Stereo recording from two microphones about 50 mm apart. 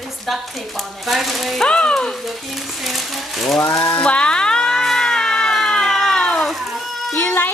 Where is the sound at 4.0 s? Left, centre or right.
Left.